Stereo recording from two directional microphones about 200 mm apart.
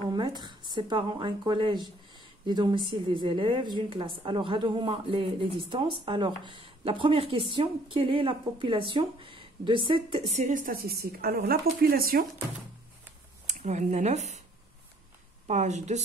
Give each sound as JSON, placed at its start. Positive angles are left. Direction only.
{"t": 0.1, "sound": "speech", "side_deg": -20}
{"t": 13.5, "sound": "speech", "side_deg": -35}
{"t": 15.4, "sound": "a woman's voice", "side_deg": -35}